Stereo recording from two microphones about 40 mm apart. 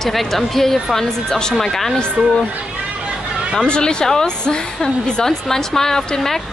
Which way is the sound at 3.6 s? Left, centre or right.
Left.